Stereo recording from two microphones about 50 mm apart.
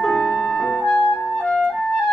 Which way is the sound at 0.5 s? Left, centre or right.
Centre.